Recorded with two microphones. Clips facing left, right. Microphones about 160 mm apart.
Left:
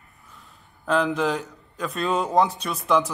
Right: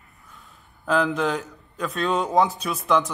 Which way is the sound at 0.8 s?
Centre (ahead or behind).